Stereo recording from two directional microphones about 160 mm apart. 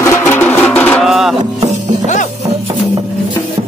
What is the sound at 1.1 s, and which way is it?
Music, centre (ahead or behind).